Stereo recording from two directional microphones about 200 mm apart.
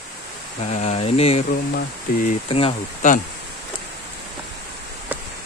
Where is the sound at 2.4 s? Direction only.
30° left (ahead or behind).